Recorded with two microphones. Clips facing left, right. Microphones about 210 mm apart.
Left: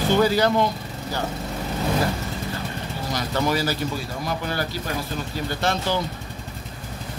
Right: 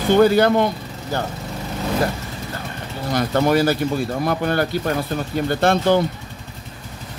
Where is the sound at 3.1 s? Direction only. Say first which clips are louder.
Right 7 dB; 55° right (ahead or behind).